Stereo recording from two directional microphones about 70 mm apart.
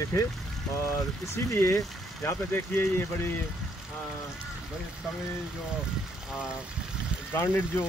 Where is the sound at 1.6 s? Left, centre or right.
Left.